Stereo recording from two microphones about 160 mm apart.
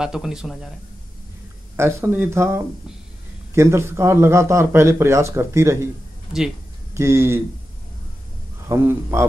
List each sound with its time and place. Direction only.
0.0 s speech: 5° right (ahead or behind)
1.8 s speech: 15° right (ahead or behind)
6.9 s speech: 15° right (ahead or behind)
8.6 s speech: 15° right (ahead or behind)